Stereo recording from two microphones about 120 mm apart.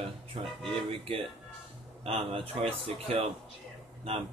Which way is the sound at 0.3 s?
50° right (ahead or behind).